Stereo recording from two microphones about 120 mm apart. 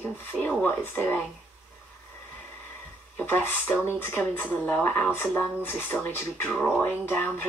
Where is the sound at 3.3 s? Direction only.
15° left (ahead or behind).